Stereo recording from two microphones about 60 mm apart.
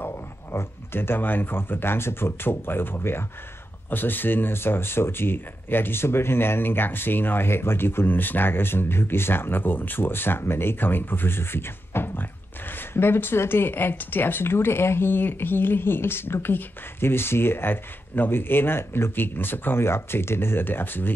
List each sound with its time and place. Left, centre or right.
0.0 s speech: left